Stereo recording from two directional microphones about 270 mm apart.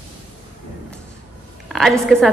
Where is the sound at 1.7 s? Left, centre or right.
Centre.